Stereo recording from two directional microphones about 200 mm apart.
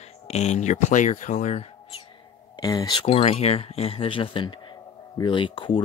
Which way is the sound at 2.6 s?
20° left (ahead or behind).